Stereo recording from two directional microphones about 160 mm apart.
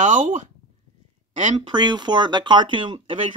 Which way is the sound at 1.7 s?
25° right (ahead or behind).